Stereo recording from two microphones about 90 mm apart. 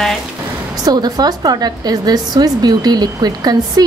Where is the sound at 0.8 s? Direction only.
45° right (ahead or behind).